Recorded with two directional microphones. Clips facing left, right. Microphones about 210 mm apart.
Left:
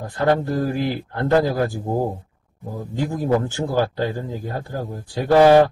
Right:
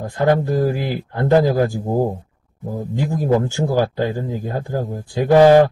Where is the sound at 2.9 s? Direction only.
15° right (ahead or behind).